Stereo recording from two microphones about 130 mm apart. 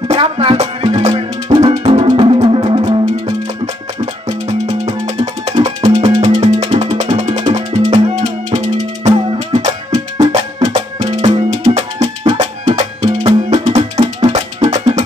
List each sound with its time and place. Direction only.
0.1 s music: 45° right (ahead or behind)
1.9 s music: 40° right (ahead or behind)
3.3 s music: 55° right (ahead or behind)